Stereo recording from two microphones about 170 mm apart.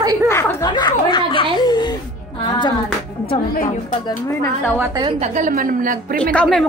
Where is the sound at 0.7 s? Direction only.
25° left (ahead or behind).